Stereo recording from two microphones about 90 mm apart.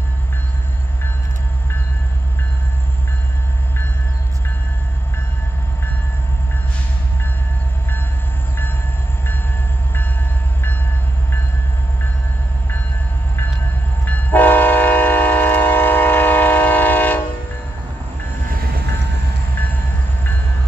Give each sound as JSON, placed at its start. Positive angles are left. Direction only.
{"t": 14.0, "sound": "train", "side_deg": 20}